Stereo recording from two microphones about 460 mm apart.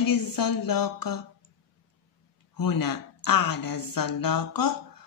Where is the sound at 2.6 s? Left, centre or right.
Left.